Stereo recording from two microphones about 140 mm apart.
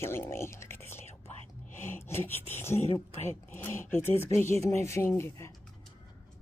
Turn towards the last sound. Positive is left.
turn(degrees=20)  # may be behind; listen again after turning